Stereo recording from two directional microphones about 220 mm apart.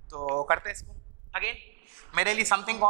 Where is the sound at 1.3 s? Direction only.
15° right (ahead or behind).